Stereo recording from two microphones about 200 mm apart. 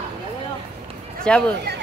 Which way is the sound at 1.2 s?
5° left (ahead or behind).